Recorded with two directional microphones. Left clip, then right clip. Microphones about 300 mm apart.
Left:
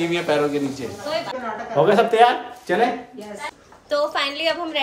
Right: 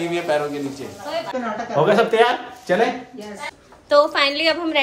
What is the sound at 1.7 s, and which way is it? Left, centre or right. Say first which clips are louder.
A woman's voice: left 1 dB; centre.